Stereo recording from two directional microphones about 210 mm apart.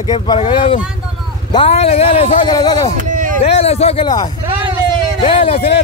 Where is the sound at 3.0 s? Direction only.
40° right (ahead or behind).